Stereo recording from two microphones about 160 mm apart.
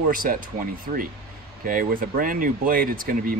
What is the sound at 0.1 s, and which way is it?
Speech, 60° right (ahead or behind).